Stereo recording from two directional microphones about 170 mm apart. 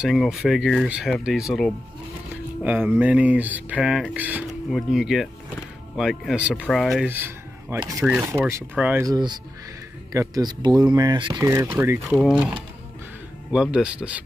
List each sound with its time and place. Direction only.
0.0 s speech: centre (ahead or behind)
7.1 s speech: 10° right (ahead or behind)
9.0 s speech: 25° right (ahead or behind)
11.4 s speech: 15° right (ahead or behind)
13.5 s speech: 5° right (ahead or behind)